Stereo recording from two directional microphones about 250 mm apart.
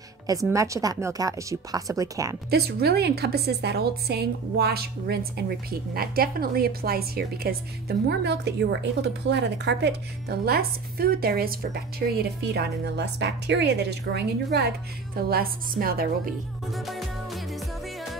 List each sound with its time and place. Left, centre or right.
0.3 s speech: centre
2.5 s a woman's voice: right
16.7 s music: centre